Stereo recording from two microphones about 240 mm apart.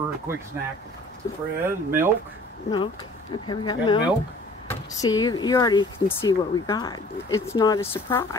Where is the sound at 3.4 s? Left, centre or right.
Centre.